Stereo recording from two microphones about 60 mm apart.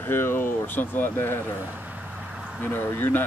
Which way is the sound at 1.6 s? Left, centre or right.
Right.